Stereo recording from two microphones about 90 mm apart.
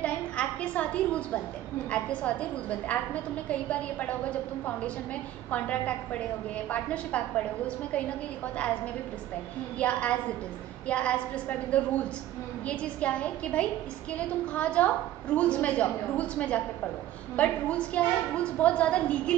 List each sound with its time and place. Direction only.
0.0 s a sound: 15° left (ahead or behind)
1.9 s a woman's voice: 15° left (ahead or behind)
9.8 s a woman's voice: 15° left (ahead or behind)